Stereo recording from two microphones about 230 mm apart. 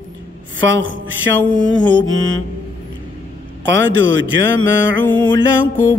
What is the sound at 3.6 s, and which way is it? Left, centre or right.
A man's voice, right.